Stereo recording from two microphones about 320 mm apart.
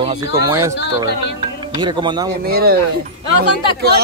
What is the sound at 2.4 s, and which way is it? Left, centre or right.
Speech, right.